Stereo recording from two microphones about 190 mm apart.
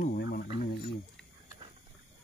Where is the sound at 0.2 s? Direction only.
55° left (ahead or behind).